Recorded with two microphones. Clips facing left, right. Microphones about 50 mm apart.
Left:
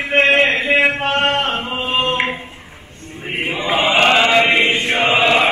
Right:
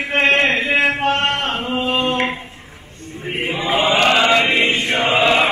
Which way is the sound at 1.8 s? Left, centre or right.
Left.